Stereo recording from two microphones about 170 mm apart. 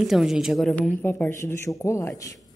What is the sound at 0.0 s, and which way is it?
A woman's voice, 5° right (ahead or behind).